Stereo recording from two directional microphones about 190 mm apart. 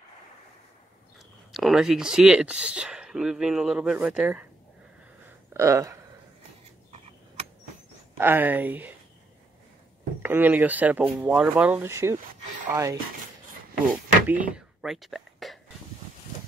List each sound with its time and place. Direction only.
1.5 s speech: centre (ahead or behind)
5.5 s speech: 15° right (ahead or behind)
8.2 s speech: 10° right (ahead or behind)
10.2 s speech: 10° right (ahead or behind)
14.2 s thunk: 10° right (ahead or behind)